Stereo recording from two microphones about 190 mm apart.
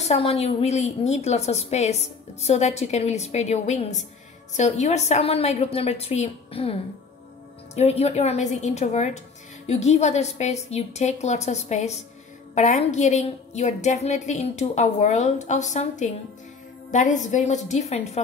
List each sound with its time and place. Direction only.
0.0 s a woman's voice: 35° left (ahead or behind)